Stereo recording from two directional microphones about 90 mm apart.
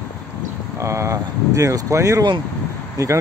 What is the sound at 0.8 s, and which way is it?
Speech, 30° right (ahead or behind).